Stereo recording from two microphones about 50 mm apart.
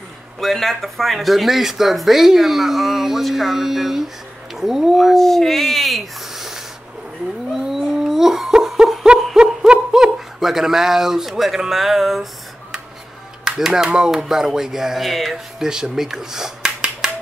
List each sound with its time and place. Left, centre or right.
0.4 s speech: centre
5.1 s speech: centre
7.6 s a sound: centre
10.1 s speech: centre
13.5 s speech: centre